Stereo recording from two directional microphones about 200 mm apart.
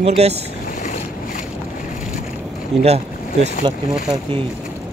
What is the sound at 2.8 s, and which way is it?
Speech, 30° right (ahead or behind).